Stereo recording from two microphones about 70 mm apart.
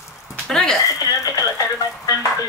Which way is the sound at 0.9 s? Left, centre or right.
Left.